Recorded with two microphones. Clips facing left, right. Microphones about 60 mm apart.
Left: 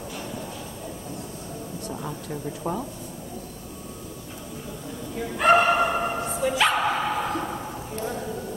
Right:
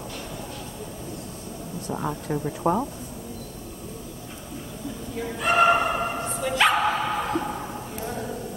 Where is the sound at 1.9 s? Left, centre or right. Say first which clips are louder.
Right 7 dB; right.